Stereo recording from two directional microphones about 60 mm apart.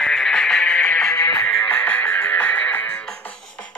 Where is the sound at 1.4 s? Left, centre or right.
Left.